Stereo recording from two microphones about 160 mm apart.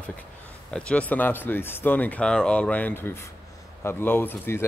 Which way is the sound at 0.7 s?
5° left (ahead or behind).